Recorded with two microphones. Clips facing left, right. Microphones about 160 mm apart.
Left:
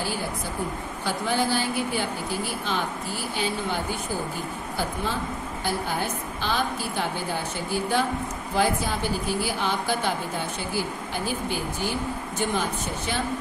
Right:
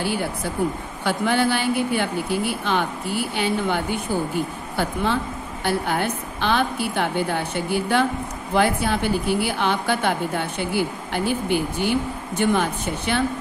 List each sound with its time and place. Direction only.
1.0 s a woman's voice: 65° right (ahead or behind)